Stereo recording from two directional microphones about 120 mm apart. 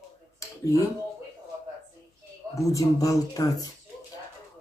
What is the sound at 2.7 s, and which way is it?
Speech, 30° left (ahead or behind).